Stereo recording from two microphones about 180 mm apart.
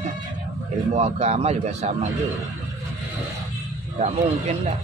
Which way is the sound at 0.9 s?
35° right (ahead or behind).